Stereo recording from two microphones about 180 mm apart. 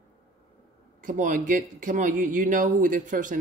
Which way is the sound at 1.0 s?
45° right (ahead or behind).